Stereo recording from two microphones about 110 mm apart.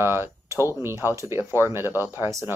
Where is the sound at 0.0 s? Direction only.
20° right (ahead or behind).